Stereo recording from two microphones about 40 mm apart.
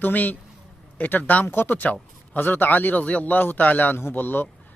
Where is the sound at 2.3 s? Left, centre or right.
Left.